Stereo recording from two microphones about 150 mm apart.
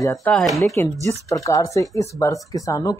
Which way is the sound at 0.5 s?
20° left (ahead or behind).